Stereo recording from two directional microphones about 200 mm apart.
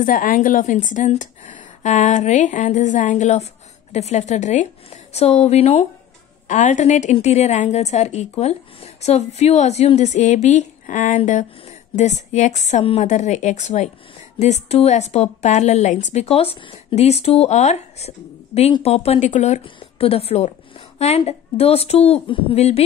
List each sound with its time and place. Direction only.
0.0 s a woman's voice: 45° left (ahead or behind)